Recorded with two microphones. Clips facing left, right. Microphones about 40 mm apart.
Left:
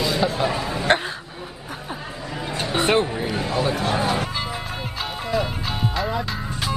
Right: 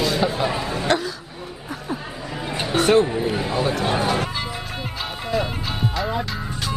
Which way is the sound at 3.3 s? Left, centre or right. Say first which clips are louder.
Right 1 dB; centre.